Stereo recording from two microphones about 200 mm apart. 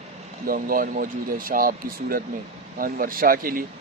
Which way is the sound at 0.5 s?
45° right (ahead or behind).